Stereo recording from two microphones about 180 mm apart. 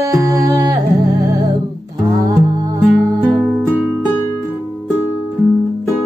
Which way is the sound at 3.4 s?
5° right (ahead or behind).